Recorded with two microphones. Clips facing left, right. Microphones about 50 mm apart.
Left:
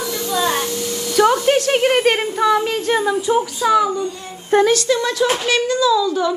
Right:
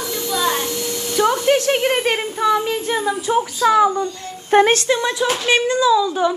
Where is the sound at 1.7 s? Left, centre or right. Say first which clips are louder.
Left 3 dB; left.